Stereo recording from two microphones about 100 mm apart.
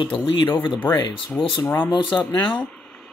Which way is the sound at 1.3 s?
25° left (ahead or behind).